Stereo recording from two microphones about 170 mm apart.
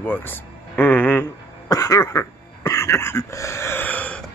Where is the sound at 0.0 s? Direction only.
10° left (ahead or behind).